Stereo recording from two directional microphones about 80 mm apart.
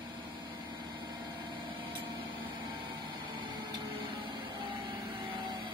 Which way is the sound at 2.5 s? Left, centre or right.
Right.